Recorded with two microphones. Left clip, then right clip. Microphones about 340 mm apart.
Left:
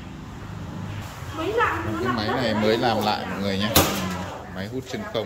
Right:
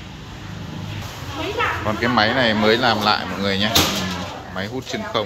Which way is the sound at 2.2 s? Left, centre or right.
Centre.